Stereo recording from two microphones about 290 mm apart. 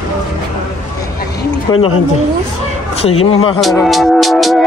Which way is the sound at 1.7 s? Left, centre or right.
Centre.